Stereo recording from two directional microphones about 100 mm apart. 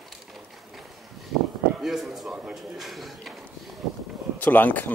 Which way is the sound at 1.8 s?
Centre (ahead or behind).